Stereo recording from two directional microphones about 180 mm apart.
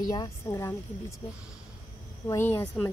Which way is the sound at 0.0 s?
20° left (ahead or behind).